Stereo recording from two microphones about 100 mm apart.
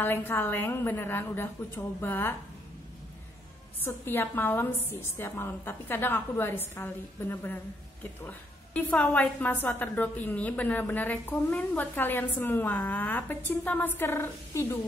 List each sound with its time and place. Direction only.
0.0 s a woman's voice: 20° left (ahead or behind)
3.8 s a woman's voice: 20° left (ahead or behind)